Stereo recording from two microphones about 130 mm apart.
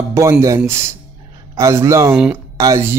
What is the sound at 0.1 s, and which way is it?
Speech, 20° right (ahead or behind).